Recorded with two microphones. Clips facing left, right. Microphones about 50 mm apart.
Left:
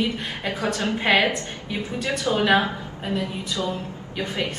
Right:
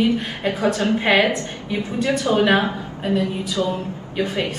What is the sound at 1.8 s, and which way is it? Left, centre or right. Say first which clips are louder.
A woman's voice: right 6 dB; right.